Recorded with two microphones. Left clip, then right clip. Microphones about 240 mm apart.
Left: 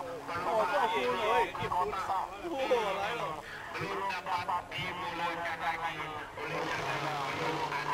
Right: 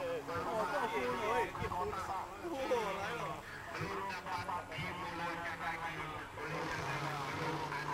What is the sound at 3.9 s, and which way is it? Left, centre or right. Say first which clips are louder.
Speech: left 8 dB; centre.